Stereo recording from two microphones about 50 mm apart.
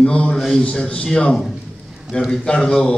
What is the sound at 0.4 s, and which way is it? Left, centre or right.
Speech, centre.